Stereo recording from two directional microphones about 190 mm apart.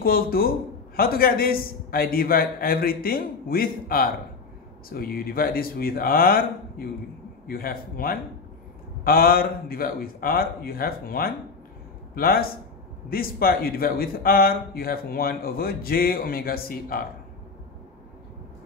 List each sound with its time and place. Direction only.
0.0 s a man's voice: 50° left (ahead or behind)